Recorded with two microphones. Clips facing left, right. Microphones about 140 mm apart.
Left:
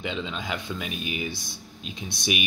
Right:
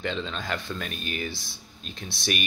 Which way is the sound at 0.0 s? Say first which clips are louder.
Even; 10° left (ahead or behind).